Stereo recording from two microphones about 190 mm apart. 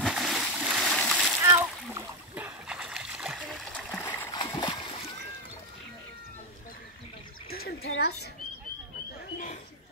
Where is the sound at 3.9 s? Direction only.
10° left (ahead or behind).